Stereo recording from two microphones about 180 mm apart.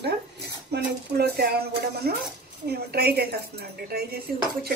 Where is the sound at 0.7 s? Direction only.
60° right (ahead or behind).